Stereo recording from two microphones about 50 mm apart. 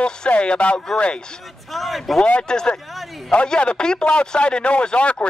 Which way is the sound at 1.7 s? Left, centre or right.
Centre.